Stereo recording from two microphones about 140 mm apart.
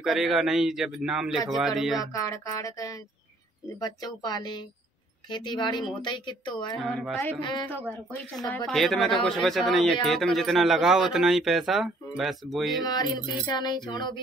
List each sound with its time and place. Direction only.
0.0 s speech: 5° right (ahead or behind)
2.1 s a woman's voice: 25° left (ahead or behind)
6.8 s speech: centre (ahead or behind)
7.6 s speech: 15° left (ahead or behind)
12.8 s a woman's voice: 30° left (ahead or behind)